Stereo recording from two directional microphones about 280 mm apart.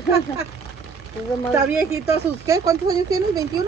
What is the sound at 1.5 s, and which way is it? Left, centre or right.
Speech, centre.